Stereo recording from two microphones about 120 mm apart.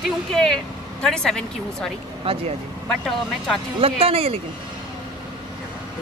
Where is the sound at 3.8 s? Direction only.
55° right (ahead or behind).